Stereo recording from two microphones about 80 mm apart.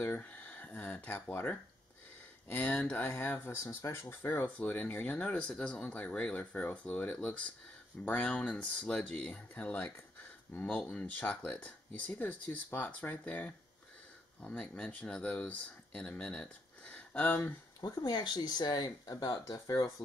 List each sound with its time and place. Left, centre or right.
0.0 s speech: left
3.1 s speech: left
17.7 s speech: left
19.4 s speech: left